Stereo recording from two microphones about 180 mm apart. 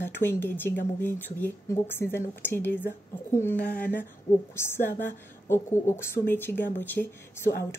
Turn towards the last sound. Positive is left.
turn(degrees=10)  # may be behind; listen again after turning